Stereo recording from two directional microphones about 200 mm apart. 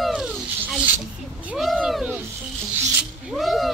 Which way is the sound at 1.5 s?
5° right (ahead or behind).